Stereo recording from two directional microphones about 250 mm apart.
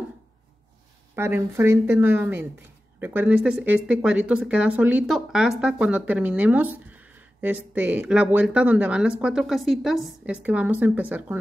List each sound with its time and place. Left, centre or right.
1.1 s speech: centre